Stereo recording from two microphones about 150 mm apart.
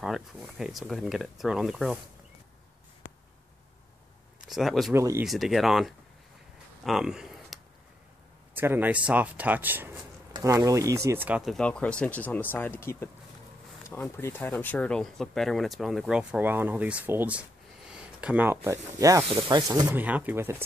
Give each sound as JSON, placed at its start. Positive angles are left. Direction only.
{"t": 0.0, "sound": "speech", "side_deg": -5}
{"t": 4.5, "sound": "speech", "side_deg": 0}
{"t": 4.9, "sound": "speech", "side_deg": -15}
{"t": 5.2, "sound": "speech", "side_deg": 0}
{"t": 6.8, "sound": "a sound", "side_deg": 0}
{"t": 8.5, "sound": "speech", "side_deg": -15}
{"t": 11.2, "sound": "speech", "side_deg": -10}
{"t": 11.5, "sound": "speech", "side_deg": 5}
{"t": 20.0, "sound": "speech", "side_deg": -10}